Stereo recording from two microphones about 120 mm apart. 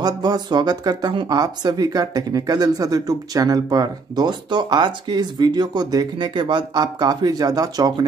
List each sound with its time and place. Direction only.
0.0 s speech: 35° right (ahead or behind)